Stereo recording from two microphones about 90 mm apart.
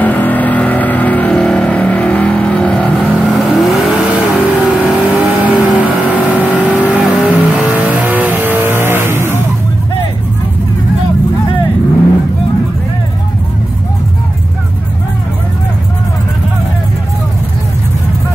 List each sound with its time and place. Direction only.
0.0 s vehicle: 20° left (ahead or behind)
3.3 s vehicle: centre (ahead or behind); by 9.4 s 25° right (ahead or behind)